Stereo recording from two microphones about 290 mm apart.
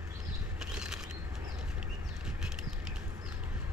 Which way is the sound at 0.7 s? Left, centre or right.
Centre.